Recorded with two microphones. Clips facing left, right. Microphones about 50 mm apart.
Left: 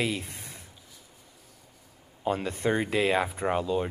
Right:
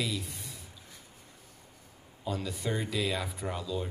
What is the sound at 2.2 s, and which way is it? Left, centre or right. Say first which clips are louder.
A man's voice: left 7 dB; left.